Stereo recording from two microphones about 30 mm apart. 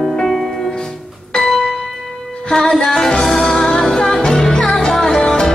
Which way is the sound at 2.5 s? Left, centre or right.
Centre.